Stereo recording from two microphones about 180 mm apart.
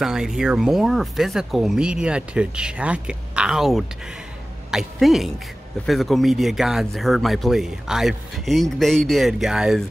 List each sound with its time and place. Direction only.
0.0 s speech: 5° right (ahead or behind)